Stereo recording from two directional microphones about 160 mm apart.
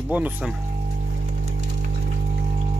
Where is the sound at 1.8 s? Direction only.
50° right (ahead or behind).